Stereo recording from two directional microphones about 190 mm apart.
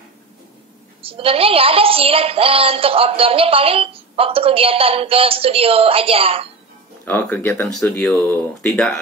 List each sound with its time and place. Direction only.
1.0 s a woman's voice: 30° right (ahead or behind)
7.1 s speech: 10° left (ahead or behind)